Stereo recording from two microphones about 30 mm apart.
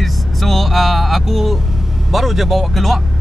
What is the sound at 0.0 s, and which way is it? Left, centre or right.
Vehicle, centre.